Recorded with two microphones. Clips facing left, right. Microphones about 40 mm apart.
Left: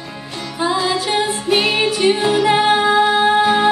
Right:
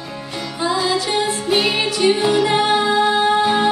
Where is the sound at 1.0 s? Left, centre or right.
Centre.